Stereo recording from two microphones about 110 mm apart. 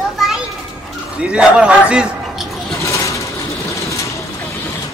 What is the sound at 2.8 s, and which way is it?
Vehicle, 30° left (ahead or behind).